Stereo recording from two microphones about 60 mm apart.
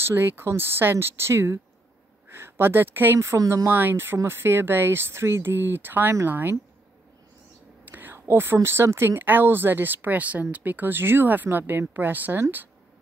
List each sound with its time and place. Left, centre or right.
0.0 s speech: right
7.8 s whispering: right
8.6 s speech: right